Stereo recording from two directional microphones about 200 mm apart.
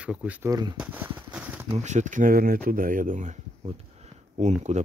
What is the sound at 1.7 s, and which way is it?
Speech, 35° right (ahead or behind).